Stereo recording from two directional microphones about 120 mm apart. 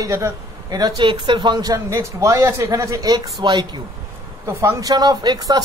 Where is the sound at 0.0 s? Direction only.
30° right (ahead or behind).